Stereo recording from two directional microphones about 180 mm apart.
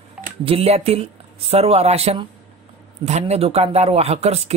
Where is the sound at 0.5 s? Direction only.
35° right (ahead or behind).